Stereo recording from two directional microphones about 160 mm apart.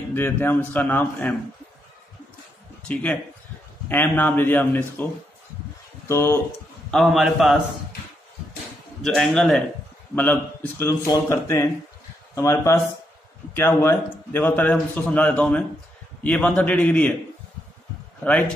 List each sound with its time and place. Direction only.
0.1 s a man's voice: 10° left (ahead or behind)
2.9 s a man's voice: 5° left (ahead or behind)
6.0 s a man's voice: 15° left (ahead or behind)
6.9 s a man's voice: centre (ahead or behind)
9.0 s a man's voice: centre (ahead or behind)
18.2 s a man's voice: 10° left (ahead or behind)